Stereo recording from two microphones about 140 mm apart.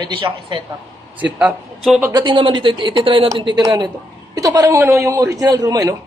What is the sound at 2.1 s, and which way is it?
A man's voice, 35° right (ahead or behind).